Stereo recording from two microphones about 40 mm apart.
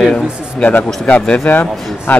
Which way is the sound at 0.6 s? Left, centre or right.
Left.